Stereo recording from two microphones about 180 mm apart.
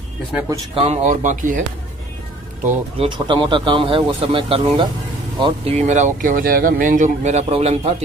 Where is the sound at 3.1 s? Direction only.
25° right (ahead or behind).